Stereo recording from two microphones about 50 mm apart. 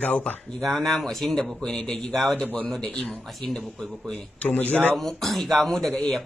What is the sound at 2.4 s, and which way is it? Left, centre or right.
Speech, left.